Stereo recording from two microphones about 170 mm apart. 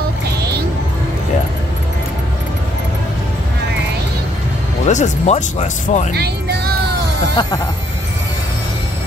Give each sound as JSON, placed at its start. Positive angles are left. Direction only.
{"t": 4.8, "sound": "speech", "side_deg": 45}
{"t": 6.1, "sound": "music", "side_deg": -70}
{"t": 7.4, "sound": "speech", "side_deg": 25}